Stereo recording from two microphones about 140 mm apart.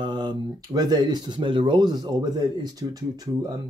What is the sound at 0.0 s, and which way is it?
Speech, 30° right (ahead or behind).